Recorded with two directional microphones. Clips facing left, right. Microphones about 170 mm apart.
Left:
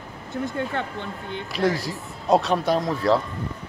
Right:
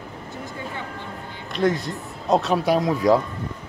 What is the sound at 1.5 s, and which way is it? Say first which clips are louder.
Speech: right 2 dB; 5° left (ahead or behind).